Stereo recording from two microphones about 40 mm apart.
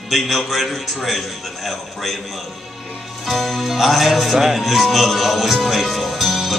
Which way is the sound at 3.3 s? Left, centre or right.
Centre.